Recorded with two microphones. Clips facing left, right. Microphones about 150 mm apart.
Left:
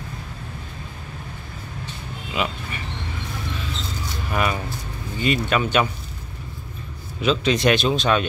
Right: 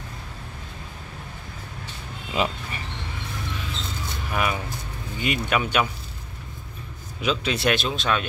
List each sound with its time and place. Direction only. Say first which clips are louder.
2.3 s a sound: right 1 dB; 35° right (ahead or behind)
4.3 s speech: left 2 dB; 5° right (ahead or behind)
7.2 s speech: left 5 dB; 10° right (ahead or behind)